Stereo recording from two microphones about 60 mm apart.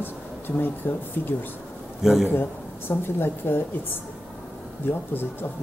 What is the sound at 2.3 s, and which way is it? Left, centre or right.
Speech, left.